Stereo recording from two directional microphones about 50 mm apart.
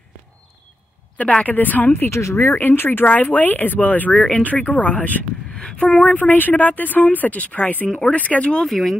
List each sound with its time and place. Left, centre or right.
1.4 s speech: left
2.0 s speech: left
2.4 s speech: left
3.1 s speech: left
8.6 s speech: centre